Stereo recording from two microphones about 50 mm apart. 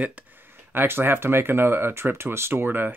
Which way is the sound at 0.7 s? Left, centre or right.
Right.